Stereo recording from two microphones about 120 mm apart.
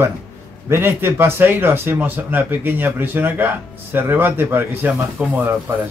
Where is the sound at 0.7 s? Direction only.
20° right (ahead or behind).